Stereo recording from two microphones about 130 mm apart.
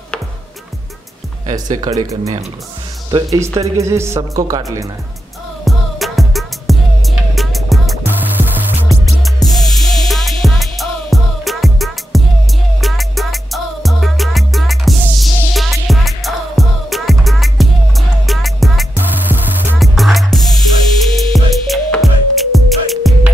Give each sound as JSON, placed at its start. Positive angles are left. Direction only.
{"t": 1.5, "sound": "speech", "side_deg": -30}
{"t": 3.1, "sound": "speech", "side_deg": -30}
{"t": 5.7, "sound": "music", "side_deg": 0}
{"t": 9.2, "sound": "music", "side_deg": 0}
{"t": 18.9, "sound": "music", "side_deg": -15}
{"t": 19.8, "sound": "music", "side_deg": 0}